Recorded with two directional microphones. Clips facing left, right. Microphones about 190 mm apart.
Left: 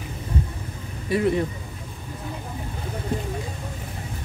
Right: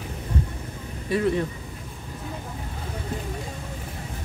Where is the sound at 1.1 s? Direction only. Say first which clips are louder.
Left 1 dB; 10° left (ahead or behind).